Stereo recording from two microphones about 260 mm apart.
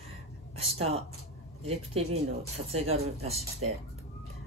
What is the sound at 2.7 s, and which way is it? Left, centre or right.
Speech, right.